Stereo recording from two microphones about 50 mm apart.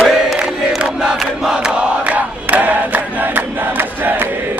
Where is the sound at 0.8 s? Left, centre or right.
Centre.